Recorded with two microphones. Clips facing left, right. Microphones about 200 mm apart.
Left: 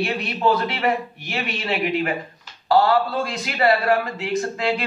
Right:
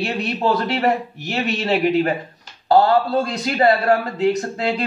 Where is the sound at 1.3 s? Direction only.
45° right (ahead or behind).